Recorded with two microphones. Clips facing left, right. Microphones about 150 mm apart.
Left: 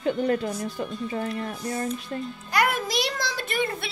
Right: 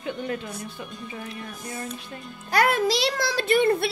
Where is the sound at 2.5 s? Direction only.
65° right (ahead or behind).